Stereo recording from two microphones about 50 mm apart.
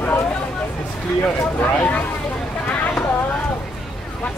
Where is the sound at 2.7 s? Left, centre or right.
Left.